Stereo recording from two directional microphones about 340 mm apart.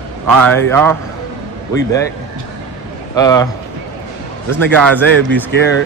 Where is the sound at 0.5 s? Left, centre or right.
Centre.